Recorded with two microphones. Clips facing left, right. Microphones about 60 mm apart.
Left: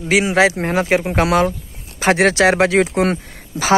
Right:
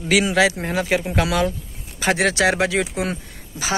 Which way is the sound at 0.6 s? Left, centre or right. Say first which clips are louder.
Left 5 dB; left.